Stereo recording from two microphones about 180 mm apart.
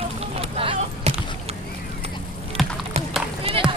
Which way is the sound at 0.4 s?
30° right (ahead or behind).